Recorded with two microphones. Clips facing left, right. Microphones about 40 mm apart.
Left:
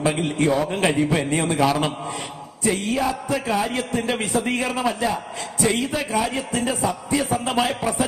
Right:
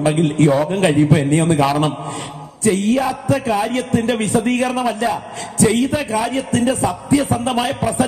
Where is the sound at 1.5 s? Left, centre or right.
Centre.